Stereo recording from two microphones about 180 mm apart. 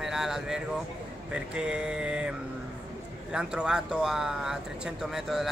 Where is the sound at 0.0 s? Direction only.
Centre (ahead or behind).